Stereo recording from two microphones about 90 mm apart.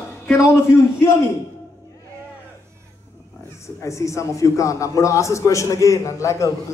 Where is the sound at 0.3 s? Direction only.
30° left (ahead or behind).